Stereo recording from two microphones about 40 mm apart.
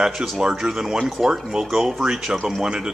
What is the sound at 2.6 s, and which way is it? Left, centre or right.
Speech, right.